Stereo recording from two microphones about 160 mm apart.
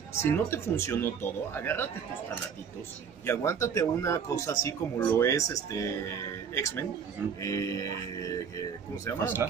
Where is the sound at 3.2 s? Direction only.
15° left (ahead or behind).